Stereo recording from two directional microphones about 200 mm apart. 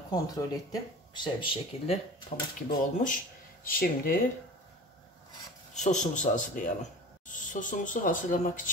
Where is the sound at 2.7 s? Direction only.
40° left (ahead or behind).